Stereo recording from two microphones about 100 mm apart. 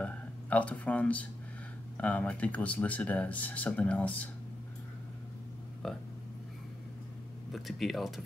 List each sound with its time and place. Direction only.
0.0 s speech: 15° left (ahead or behind)
5.8 s speech: 5° left (ahead or behind)
7.5 s speech: centre (ahead or behind)